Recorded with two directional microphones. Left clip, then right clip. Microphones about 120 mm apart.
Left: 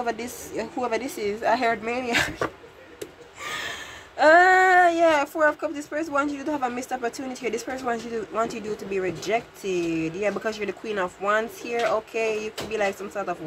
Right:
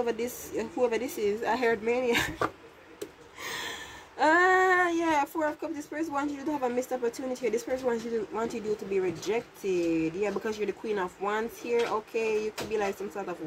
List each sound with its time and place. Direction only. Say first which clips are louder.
0.0 s speech: left 2 dB; 15° left (ahead or behind)
3.4 s a sound: left 5 dB; 10° left (ahead or behind)
4.2 s speech: left 7 dB; 20° left (ahead or behind)